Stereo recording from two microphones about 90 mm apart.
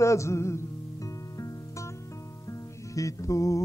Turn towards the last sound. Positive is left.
turn(degrees=35)  # may be behind; listen again after turning